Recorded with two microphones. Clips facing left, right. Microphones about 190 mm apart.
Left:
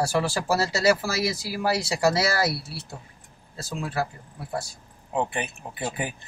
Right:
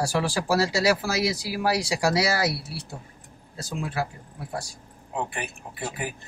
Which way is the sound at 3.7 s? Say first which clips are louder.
Left 1 dB; 15° right (ahead or behind).